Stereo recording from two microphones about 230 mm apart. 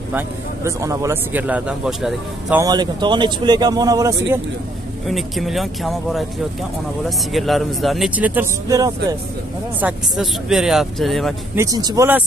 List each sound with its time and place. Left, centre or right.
0.7 s speech: centre
2.6 s speech: centre
5.0 s speech: centre
9.8 s speech: centre
11.5 s speech: centre